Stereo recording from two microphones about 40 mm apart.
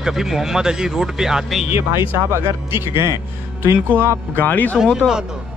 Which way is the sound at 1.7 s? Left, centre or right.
Right.